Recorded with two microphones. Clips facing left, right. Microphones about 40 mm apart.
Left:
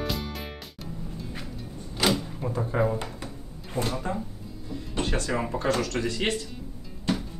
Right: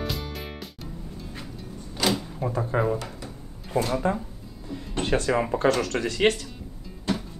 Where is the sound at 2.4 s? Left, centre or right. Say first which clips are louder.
Right 1 dB; centre.